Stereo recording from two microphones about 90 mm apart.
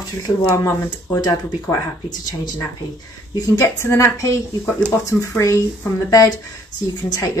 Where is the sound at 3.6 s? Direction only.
30° left (ahead or behind).